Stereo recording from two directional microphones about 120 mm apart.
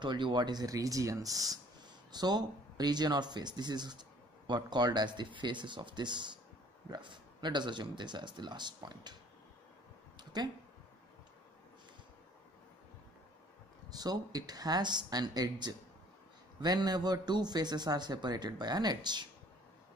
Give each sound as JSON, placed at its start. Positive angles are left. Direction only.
{"t": 0.0, "sound": "a man's voice", "side_deg": -40}
{"t": 10.1, "sound": "a sound", "side_deg": -35}
{"t": 13.8, "sound": "a man's voice", "side_deg": -35}